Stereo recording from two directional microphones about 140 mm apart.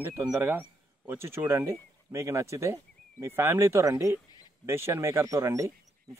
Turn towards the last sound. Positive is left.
turn(degrees=-20)  # may be behind; listen again after turning